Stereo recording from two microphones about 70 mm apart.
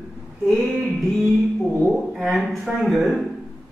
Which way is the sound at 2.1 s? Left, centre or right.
Centre.